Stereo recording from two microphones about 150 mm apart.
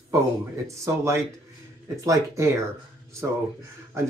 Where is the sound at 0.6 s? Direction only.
20° right (ahead or behind).